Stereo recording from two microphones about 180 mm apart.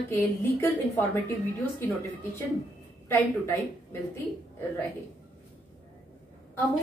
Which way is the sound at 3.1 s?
10° left (ahead or behind).